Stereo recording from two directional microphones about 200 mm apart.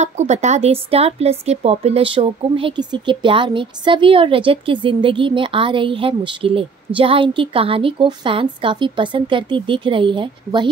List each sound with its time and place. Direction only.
0.0 s speech: 35° right (ahead or behind)